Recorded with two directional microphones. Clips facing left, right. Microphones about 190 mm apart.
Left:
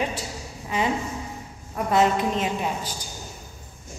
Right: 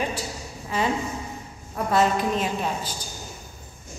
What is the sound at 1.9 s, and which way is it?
A woman's voice, 20° left (ahead or behind).